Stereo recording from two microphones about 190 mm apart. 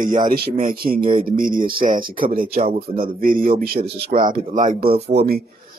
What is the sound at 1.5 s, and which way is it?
Speech, 25° right (ahead or behind).